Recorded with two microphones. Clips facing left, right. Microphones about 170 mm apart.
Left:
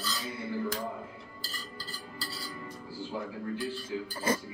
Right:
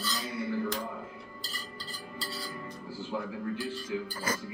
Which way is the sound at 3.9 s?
30° left (ahead or behind).